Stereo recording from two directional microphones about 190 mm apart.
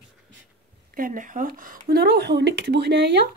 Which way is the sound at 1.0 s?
45° right (ahead or behind).